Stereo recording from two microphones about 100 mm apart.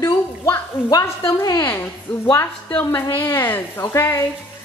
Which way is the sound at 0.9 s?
35° left (ahead or behind).